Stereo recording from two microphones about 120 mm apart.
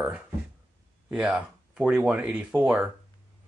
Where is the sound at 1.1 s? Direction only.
10° right (ahead or behind).